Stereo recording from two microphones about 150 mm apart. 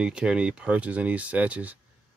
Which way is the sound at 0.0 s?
5° right (ahead or behind).